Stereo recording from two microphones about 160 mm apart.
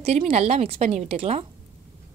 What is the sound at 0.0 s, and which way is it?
A woman's voice, 40° right (ahead or behind).